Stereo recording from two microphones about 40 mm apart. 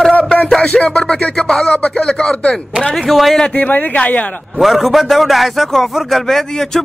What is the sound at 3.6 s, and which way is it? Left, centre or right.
Speech, left.